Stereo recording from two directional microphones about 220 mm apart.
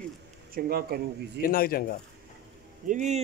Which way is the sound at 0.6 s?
45° right (ahead or behind).